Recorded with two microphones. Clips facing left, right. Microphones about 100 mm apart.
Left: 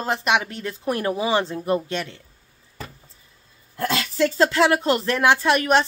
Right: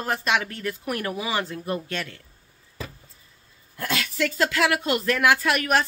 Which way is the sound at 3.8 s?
30° left (ahead or behind).